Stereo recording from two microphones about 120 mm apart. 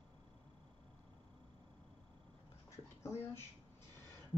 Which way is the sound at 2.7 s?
20° left (ahead or behind).